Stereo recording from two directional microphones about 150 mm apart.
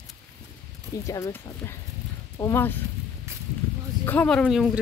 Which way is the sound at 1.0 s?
20° left (ahead or behind).